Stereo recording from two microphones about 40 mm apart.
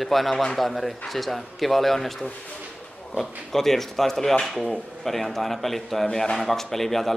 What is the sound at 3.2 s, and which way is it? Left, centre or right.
A man's voice, centre.